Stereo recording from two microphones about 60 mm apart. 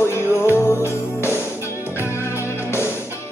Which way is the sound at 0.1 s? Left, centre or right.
Left.